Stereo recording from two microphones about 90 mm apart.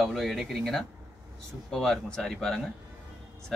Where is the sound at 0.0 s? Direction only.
5° left (ahead or behind).